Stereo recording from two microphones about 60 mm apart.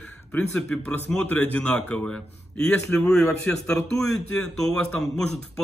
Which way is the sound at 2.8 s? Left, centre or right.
Left.